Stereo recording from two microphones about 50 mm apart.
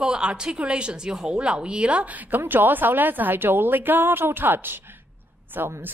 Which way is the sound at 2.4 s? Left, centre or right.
Right.